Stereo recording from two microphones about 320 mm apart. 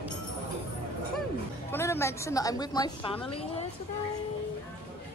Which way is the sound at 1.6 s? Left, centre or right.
Centre.